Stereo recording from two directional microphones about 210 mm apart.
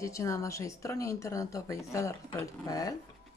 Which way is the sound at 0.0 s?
15° left (ahead or behind).